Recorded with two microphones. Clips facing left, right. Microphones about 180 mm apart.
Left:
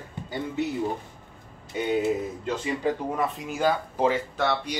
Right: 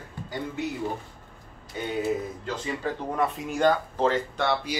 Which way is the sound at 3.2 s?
Centre (ahead or behind).